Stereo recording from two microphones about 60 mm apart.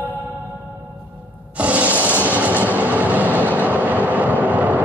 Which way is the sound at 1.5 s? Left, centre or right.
Right.